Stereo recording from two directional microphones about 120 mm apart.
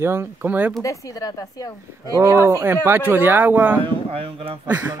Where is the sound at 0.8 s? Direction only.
30° left (ahead or behind).